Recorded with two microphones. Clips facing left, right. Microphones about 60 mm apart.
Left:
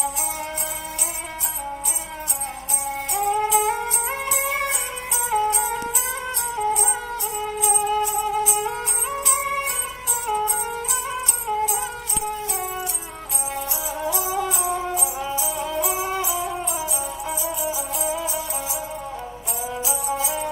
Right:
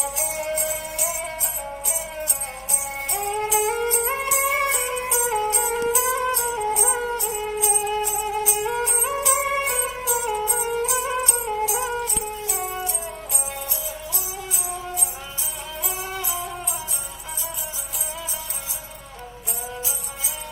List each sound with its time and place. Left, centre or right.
3.2 s music: centre
15.7 s music: centre
16.0 s music: left